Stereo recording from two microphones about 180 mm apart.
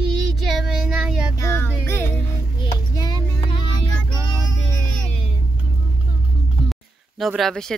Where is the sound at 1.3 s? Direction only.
15° left (ahead or behind).